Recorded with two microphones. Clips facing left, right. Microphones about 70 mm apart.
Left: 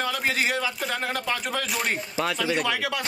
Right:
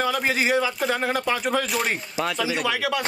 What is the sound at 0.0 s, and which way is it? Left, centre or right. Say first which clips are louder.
Speech: right 3 dB; centre.